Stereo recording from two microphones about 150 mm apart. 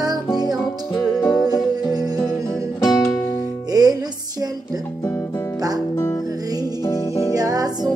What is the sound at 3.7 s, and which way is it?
Music, 25° right (ahead or behind).